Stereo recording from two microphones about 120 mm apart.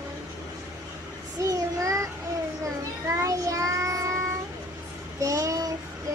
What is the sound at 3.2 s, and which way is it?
Child singing, 30° right (ahead or behind).